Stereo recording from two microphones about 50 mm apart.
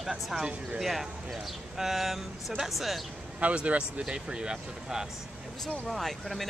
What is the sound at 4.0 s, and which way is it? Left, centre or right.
Speech, centre.